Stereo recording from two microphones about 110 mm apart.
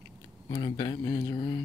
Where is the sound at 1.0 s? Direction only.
25° left (ahead or behind).